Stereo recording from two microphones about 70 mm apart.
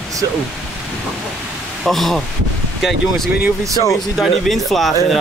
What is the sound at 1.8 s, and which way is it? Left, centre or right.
Speech, centre.